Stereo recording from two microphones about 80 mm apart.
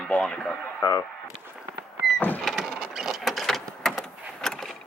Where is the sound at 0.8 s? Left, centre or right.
Left.